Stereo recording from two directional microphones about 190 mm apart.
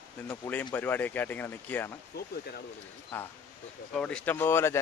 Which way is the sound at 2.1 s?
55° left (ahead or behind).